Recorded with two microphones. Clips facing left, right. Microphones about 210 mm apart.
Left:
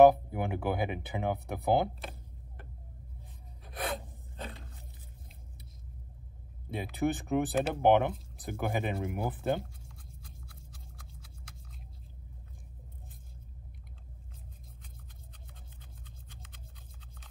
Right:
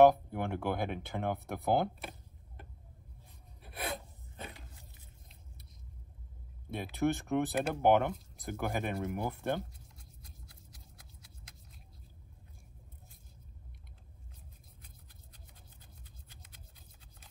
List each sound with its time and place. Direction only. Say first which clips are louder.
0.0 s speech: left 3 dB; 5° left (ahead or behind)
3.7 s filing: left 3 dB; 55° left (ahead or behind)
6.7 s speech: left 1 dB; centre (ahead or behind)